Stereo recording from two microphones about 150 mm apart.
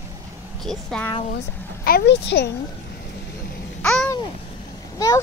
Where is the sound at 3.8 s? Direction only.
5° left (ahead or behind).